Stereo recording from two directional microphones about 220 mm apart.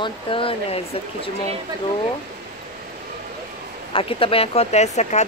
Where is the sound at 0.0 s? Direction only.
25° left (ahead or behind).